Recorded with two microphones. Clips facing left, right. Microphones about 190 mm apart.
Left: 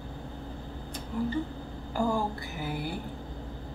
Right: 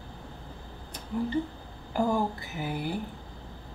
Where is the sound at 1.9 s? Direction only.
20° right (ahead or behind).